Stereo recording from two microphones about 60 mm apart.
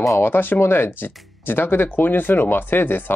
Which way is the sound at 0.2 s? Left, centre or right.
Left.